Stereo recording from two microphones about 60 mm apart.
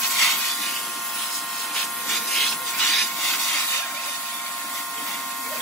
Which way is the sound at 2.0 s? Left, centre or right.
Centre.